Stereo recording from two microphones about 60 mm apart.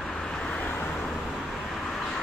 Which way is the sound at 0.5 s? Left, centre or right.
Left.